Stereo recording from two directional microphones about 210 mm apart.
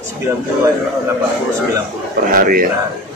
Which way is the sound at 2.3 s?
40° right (ahead or behind).